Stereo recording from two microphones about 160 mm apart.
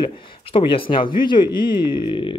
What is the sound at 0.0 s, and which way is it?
Speech, 30° left (ahead or behind).